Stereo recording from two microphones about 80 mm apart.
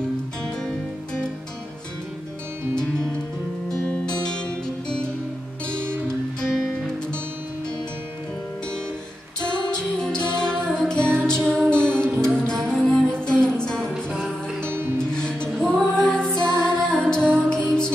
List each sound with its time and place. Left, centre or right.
2.7 s music: centre
6.4 s music: centre
9.4 s music: centre
14.6 s music: right
15.1 s music: centre